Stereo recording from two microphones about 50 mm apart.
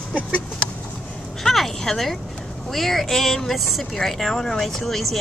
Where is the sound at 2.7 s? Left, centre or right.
Centre.